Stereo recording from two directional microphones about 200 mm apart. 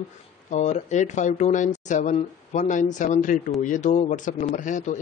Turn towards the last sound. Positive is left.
turn(degrees=40)  # may be behind; listen again after turning